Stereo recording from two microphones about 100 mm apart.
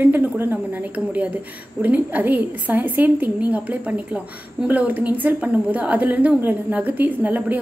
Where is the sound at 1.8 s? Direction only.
15° right (ahead or behind).